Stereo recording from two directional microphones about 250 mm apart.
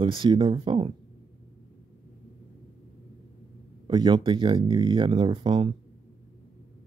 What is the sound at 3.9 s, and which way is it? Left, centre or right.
Speech, centre.